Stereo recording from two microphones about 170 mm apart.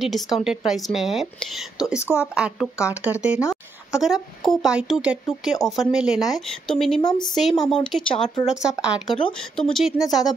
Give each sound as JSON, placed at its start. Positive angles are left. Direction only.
{"t": 0.0, "sound": "a woman's voice", "side_deg": 0}
{"t": 2.0, "sound": "speech", "side_deg": 15}
{"t": 2.3, "sound": "a woman's voice", "side_deg": -5}
{"t": 7.0, "sound": "a woman's voice", "side_deg": 25}
{"t": 7.3, "sound": "a woman's voice", "side_deg": 0}